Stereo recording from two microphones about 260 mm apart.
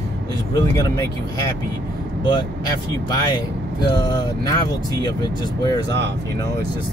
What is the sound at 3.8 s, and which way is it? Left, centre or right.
Vehicle, centre.